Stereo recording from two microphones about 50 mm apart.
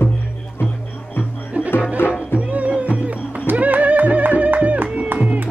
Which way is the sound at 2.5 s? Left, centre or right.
Right.